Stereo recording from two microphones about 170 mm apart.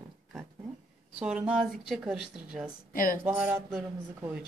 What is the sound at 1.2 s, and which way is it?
Speech, 5° right (ahead or behind).